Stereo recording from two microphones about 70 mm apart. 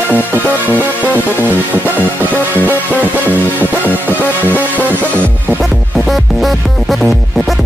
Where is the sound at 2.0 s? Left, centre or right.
Right.